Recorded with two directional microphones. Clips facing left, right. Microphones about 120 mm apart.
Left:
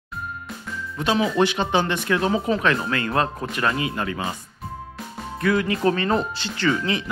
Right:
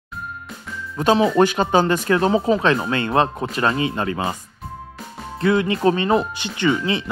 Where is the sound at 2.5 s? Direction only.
25° right (ahead or behind).